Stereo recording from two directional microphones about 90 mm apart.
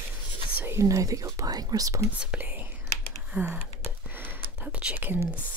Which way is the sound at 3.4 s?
20° right (ahead or behind).